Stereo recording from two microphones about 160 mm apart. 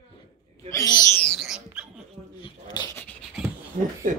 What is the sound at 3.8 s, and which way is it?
Speech, 60° right (ahead or behind).